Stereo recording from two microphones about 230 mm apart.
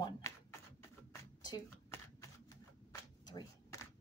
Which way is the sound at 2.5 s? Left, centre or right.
Centre.